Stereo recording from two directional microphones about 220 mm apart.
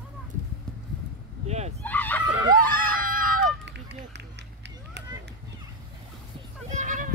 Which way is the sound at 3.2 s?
45° right (ahead or behind).